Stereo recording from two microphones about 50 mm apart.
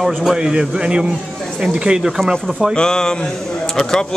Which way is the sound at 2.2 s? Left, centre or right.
Centre.